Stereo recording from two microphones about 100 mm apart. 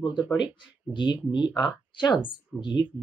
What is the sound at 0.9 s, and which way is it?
Speech, 50° left (ahead or behind).